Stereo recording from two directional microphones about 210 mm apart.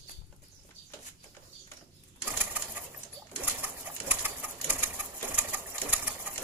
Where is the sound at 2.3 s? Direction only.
10° right (ahead or behind).